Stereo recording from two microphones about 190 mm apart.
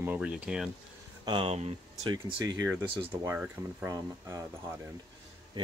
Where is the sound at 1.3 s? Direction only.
30° right (ahead or behind).